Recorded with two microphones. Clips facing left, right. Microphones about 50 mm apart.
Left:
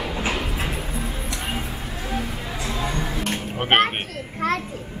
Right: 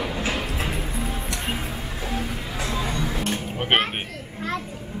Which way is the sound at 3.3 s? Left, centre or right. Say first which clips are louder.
Left 3 dB; centre.